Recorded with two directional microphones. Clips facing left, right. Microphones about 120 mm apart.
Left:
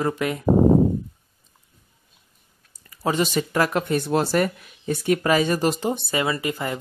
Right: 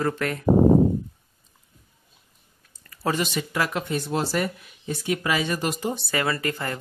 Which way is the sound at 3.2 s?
40° left (ahead or behind).